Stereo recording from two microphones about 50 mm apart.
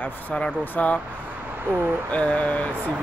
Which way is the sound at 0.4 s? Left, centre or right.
Left.